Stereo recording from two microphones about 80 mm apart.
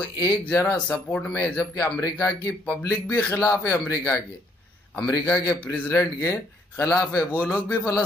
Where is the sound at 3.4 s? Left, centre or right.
Left.